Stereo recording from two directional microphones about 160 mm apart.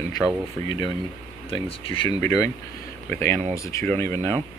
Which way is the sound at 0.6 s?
25° left (ahead or behind).